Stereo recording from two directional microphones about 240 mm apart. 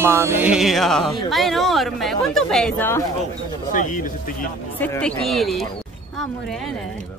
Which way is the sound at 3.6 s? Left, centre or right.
Left.